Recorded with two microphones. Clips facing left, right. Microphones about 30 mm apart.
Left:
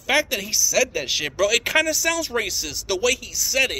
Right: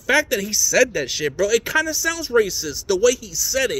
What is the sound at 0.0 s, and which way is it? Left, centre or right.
A woman's voice, left.